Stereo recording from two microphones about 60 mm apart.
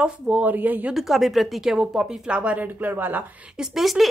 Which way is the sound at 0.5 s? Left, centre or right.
Right.